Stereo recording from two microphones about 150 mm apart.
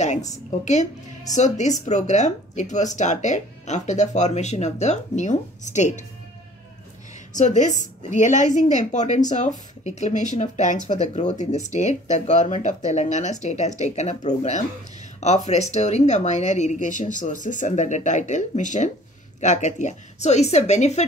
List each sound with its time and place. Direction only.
0.0 s speech: 50° left (ahead or behind)
7.3 s speech: 55° left (ahead or behind)